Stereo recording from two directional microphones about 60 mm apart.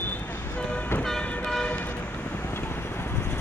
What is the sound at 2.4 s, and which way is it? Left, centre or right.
Vehicle, left.